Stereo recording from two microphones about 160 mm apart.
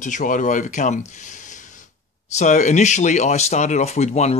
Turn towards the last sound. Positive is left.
turn(degrees=45)  # may be behind; listen again after turning